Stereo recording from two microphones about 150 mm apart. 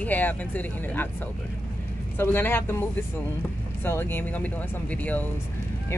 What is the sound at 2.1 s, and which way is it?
Speech, 15° left (ahead or behind).